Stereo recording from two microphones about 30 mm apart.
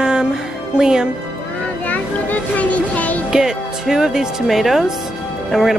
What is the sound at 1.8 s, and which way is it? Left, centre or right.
A child's voice, left.